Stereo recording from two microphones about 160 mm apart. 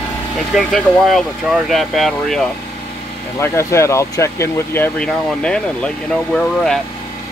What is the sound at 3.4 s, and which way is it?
Speech, 15° left (ahead or behind).